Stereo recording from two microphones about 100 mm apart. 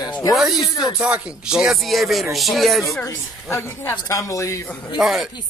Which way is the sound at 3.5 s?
25° left (ahead or behind).